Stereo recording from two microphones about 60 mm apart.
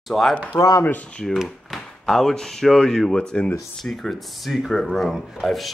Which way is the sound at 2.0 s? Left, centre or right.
Centre.